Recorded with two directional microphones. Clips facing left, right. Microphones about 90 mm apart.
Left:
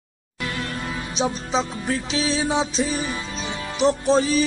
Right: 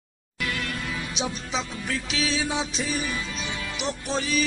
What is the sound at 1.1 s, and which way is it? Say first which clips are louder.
Music: left 9 dB; 35° left (ahead or behind).